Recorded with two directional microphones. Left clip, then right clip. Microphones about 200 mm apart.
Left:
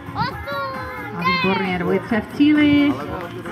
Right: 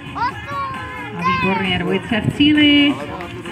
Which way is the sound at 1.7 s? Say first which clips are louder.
Right 1 dB; 35° right (ahead or behind).